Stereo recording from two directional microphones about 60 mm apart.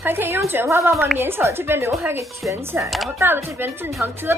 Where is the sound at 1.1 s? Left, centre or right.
Right.